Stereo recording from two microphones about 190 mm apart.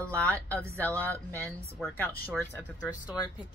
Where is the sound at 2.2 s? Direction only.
10° left (ahead or behind).